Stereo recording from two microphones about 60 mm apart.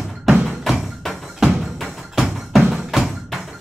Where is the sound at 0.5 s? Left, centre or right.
Centre.